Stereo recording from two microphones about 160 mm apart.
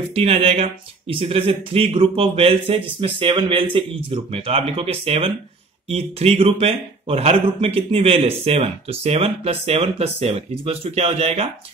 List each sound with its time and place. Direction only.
0.1 s a man's voice: 40° right (ahead or behind)